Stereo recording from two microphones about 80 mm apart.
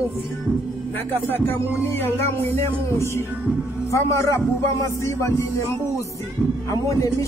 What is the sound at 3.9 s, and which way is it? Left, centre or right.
Speech, left.